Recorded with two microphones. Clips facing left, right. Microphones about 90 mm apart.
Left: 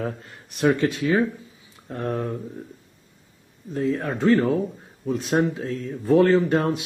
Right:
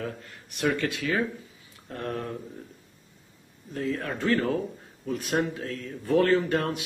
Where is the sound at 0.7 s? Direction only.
30° left (ahead or behind).